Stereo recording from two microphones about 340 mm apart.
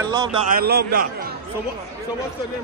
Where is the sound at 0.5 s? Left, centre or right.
Right.